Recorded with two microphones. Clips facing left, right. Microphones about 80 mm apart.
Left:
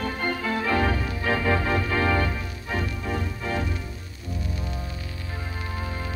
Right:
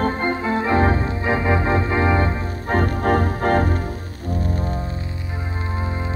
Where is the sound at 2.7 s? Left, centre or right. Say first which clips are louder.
Right 10 dB; right.